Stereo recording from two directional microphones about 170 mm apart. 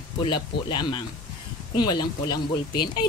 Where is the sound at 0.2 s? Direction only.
30° left (ahead or behind).